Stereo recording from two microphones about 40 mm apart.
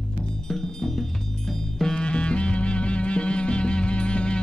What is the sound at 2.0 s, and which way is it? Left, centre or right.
Music, left.